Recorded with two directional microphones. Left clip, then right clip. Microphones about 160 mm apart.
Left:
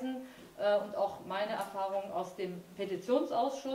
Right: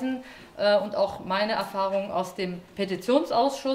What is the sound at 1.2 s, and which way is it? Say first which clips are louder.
Speech: right 9 dB; 25° right (ahead or behind).